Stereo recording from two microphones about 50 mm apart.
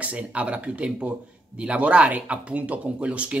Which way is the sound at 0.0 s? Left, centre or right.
Right.